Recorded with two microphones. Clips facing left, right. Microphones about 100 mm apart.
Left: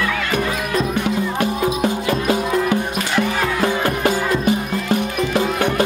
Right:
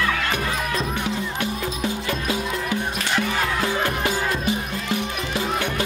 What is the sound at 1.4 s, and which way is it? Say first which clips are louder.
Music: left 7 dB; 50° left (ahead or behind).